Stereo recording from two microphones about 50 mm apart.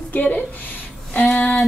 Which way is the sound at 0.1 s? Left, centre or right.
Left.